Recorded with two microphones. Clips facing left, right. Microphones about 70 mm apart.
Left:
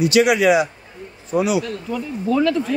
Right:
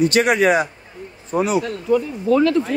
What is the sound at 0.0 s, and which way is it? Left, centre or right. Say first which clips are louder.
A man's voice: left 1 dB; right.